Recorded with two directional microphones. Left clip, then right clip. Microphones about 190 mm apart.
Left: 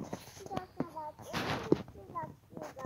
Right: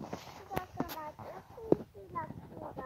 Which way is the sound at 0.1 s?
5° right (ahead or behind).